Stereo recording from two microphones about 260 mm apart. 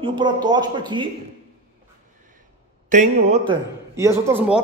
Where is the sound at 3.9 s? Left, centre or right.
Centre.